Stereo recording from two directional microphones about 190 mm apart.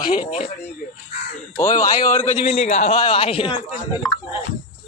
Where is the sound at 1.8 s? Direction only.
45° left (ahead or behind); by 3.6 s 25° left (ahead or behind).